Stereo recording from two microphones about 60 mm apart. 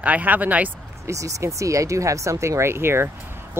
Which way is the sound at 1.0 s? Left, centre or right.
Right.